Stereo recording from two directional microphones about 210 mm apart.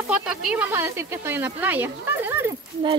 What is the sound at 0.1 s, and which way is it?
Speech, 5° right (ahead or behind).